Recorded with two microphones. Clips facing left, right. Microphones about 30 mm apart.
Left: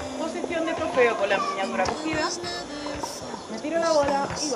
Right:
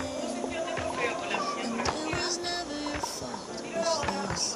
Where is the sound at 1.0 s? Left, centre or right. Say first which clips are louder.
Left 13 dB; left.